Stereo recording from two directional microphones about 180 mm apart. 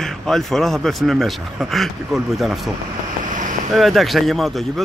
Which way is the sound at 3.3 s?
45° right (ahead or behind).